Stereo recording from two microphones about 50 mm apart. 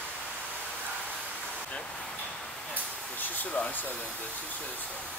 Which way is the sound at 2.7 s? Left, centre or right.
Left.